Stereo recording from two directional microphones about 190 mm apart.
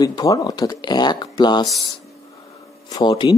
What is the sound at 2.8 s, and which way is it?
Speech, 20° left (ahead or behind).